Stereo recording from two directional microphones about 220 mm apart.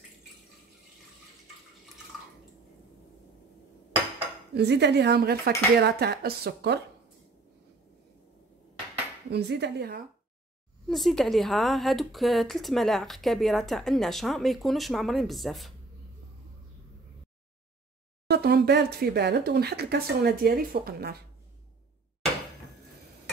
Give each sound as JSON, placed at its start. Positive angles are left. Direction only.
{"t": 4.6, "sound": "speech", "side_deg": -50}
{"t": 9.3, "sound": "speech", "side_deg": -50}
{"t": 10.9, "sound": "a woman's voice", "side_deg": 0}
{"t": 18.3, "sound": "speech", "side_deg": -45}